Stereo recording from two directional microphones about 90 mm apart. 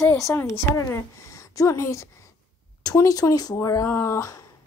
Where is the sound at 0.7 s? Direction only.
35° left (ahead or behind).